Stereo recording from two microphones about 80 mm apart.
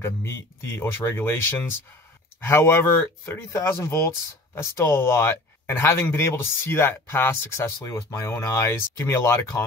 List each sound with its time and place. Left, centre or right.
0.0 s speech: left